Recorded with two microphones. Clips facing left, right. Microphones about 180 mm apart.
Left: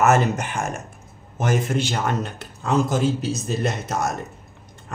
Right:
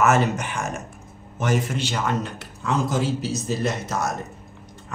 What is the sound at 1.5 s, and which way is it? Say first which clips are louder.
Speech: left 2 dB; 50° left (ahead or behind).